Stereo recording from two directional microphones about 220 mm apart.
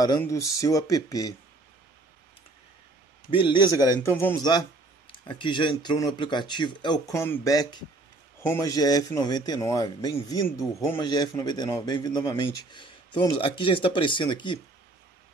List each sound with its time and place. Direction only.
0.0 s a man's voice: 15° left (ahead or behind)
3.3 s a man's voice: 20° left (ahead or behind)